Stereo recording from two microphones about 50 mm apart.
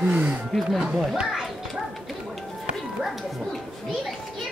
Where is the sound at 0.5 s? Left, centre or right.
Centre.